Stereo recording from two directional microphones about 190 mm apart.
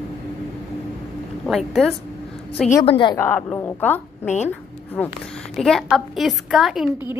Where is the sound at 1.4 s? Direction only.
Centre (ahead or behind).